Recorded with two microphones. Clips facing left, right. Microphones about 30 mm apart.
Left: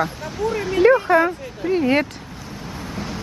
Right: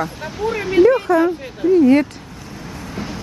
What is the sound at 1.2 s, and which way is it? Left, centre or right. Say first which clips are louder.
Speech: right 4 dB; left.